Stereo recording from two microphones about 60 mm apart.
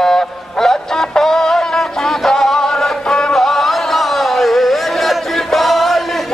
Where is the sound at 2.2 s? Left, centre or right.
Centre.